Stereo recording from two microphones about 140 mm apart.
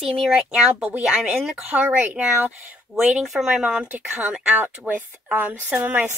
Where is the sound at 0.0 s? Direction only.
5° right (ahead or behind).